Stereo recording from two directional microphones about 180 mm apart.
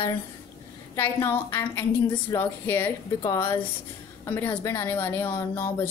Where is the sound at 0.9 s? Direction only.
10° left (ahead or behind).